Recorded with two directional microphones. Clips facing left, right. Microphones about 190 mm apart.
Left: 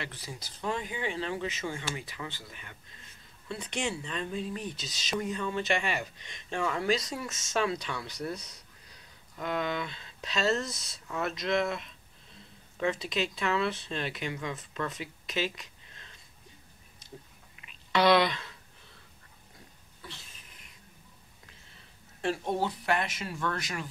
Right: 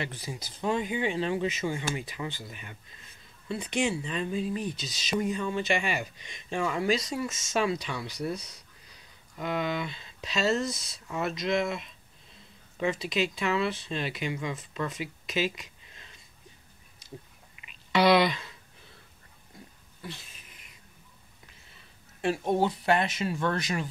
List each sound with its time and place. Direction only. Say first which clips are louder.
0.0 s speech: right 5 dB; 15° right (ahead or behind)
9.4 s speech: right 2 dB; 5° right (ahead or behind)
17.9 s speech: right 2 dB; 10° right (ahead or behind)
22.2 s speech: right 4 dB; 15° right (ahead or behind)